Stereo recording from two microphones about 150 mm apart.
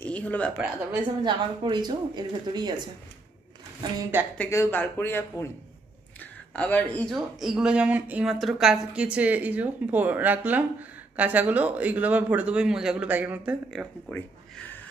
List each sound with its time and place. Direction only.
0.0 s a sound: 10° left (ahead or behind)
1.2 s speech: 30° right (ahead or behind)
4.0 s speech: 15° right (ahead or behind)
4.4 s speech: 15° left (ahead or behind)
6.5 s speech: 10° left (ahead or behind)
7.2 s speech: centre (ahead or behind)
13.7 s speech: centre (ahead or behind)
14.1 s a sound: 10° left (ahead or behind)